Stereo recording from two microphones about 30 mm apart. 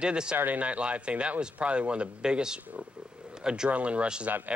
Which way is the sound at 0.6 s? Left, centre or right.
Right.